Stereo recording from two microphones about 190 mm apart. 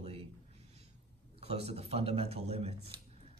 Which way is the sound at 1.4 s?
35° right (ahead or behind).